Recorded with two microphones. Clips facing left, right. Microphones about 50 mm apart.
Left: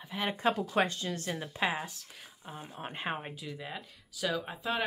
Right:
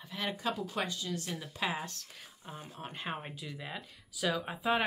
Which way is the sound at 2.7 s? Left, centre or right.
Left.